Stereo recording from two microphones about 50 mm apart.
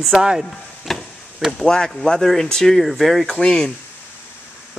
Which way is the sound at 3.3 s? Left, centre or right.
Centre.